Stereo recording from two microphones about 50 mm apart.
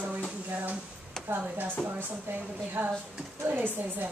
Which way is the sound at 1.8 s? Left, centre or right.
Centre.